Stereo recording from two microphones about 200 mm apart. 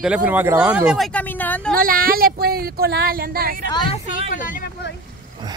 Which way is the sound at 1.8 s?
45° right (ahead or behind).